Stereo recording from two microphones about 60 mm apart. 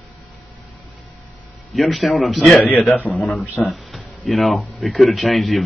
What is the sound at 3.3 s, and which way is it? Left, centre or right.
Speech, centre.